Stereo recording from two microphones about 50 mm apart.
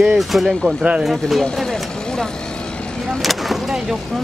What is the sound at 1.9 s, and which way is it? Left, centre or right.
Vehicle, centre.